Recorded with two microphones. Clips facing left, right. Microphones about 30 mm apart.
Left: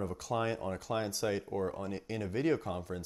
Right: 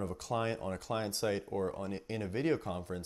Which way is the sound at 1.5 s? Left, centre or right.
Right.